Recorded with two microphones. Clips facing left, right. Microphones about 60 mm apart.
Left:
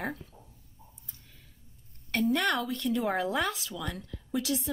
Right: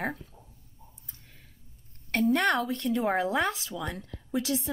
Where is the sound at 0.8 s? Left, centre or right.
Centre.